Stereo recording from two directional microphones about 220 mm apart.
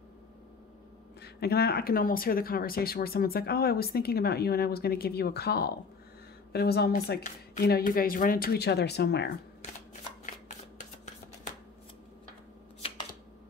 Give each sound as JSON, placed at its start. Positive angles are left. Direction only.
{"t": 1.2, "sound": "speech", "side_deg": 45}